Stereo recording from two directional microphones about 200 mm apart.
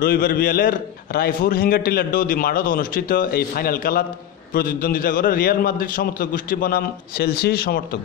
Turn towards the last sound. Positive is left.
turn(degrees=50)  # may be behind; listen again after turning